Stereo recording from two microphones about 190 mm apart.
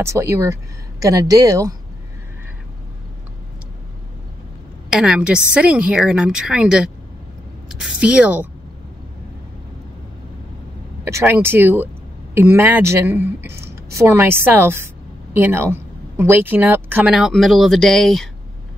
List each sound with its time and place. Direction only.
0.0 s speech: 15° right (ahead or behind)
4.8 s speech: 5° right (ahead or behind)
11.1 s speech: 15° right (ahead or behind); by 18.3 s 5° left (ahead or behind)